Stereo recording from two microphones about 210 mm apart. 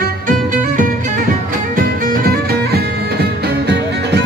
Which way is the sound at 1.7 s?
40° right (ahead or behind).